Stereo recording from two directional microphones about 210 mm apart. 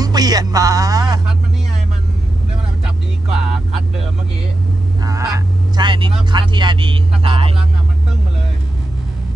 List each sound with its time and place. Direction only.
0.0 s music: 20° right (ahead or behind)
5.0 s honk: 15° right (ahead or behind)